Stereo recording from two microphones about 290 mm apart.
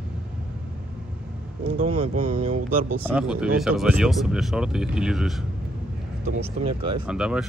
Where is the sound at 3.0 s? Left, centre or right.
Centre.